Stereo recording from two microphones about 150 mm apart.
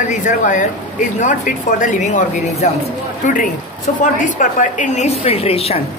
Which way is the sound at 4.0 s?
60° left (ahead or behind).